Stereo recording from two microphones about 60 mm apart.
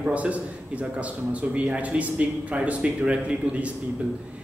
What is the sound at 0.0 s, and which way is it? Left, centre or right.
A man's voice, right.